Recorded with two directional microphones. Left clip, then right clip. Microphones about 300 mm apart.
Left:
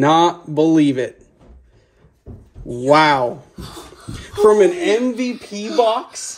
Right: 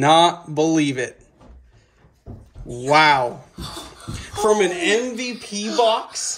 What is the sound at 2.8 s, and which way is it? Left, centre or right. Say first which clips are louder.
Speech: left 2 dB; centre.